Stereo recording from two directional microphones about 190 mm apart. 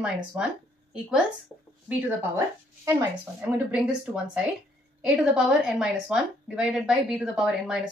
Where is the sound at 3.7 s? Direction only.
5° right (ahead or behind).